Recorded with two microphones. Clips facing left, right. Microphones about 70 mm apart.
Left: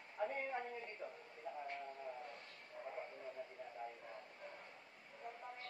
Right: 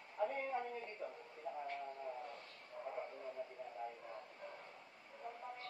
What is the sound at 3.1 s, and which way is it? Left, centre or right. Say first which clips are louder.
Radio: right 2 dB; centre.